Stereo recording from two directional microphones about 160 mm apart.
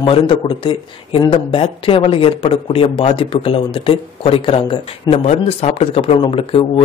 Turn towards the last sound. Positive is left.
turn(degrees=35)  # may be behind; listen again after turning